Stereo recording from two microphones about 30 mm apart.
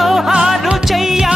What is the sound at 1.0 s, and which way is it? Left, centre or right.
Music, centre.